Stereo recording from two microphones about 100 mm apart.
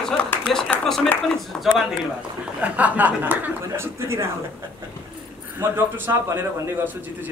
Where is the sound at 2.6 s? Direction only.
15° right (ahead or behind).